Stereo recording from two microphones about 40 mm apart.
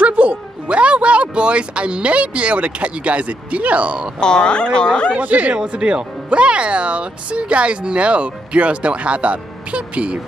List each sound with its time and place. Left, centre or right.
0.0 s speech: right
4.2 s speech: left
5.1 s speech: right
5.7 s speech: right